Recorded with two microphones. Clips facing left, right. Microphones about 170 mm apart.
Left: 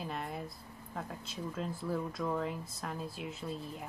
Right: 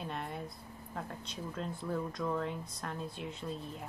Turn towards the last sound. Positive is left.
turn(degrees=0)  # may be behind; listen again after turning